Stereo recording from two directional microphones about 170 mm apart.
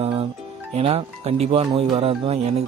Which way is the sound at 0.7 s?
35° right (ahead or behind).